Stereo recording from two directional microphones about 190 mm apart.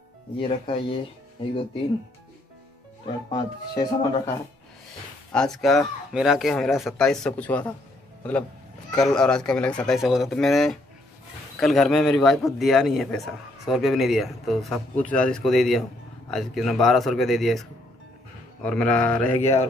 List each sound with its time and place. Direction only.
0.4 s speech: 30° left (ahead or behind)
3.3 s speech: 20° left (ahead or behind)
5.3 s a man's voice: 5° left (ahead or behind)